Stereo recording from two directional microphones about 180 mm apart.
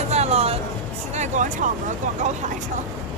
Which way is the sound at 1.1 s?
40° right (ahead or behind).